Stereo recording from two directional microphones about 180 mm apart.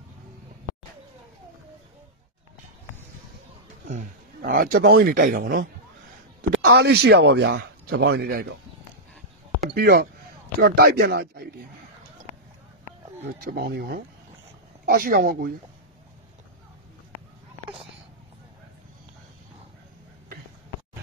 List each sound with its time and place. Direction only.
3.8 s speech: 45° right (ahead or behind)
6.5 s speech: 65° right (ahead or behind)
9.7 s speech: 60° right (ahead or behind)
13.2 s speech: 60° right (ahead or behind)